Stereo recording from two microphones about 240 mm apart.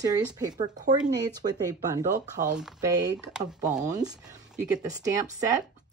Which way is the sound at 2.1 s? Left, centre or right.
Right.